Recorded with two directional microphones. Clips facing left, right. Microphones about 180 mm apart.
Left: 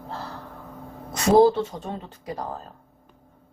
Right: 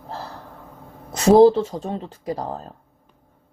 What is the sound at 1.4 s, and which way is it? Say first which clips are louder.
Speech: right 5 dB; 30° right (ahead or behind).